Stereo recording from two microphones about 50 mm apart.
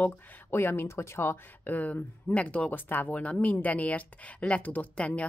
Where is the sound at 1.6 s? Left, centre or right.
Left.